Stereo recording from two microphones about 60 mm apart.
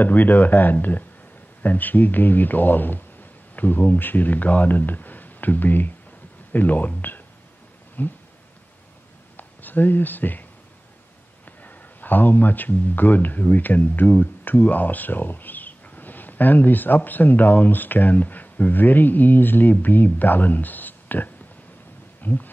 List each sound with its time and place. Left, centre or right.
0.0 s speech: left
9.4 s speech: left
11.6 s speech: left